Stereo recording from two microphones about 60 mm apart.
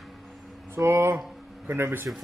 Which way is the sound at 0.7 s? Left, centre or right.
Right.